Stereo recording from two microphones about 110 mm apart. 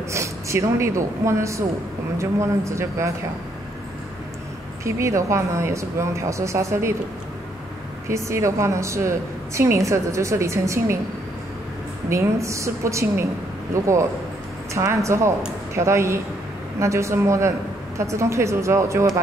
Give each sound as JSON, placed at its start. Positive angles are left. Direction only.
{"t": 0.1, "sound": "a woman's voice", "side_deg": -25}
{"t": 4.8, "sound": "a woman's voice", "side_deg": -25}
{"t": 8.1, "sound": "a woman's voice", "side_deg": -25}
{"t": 12.1, "sound": "a woman's voice", "side_deg": -25}